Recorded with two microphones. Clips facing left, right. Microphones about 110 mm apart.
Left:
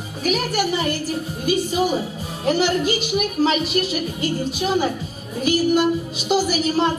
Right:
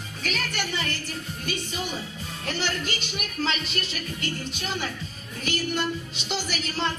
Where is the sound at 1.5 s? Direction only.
5° left (ahead or behind).